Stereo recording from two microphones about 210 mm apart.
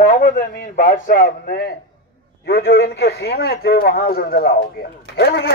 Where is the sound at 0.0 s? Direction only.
40° left (ahead or behind).